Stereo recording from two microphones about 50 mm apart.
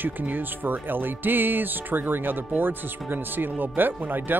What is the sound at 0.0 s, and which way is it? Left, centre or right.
Speech, right.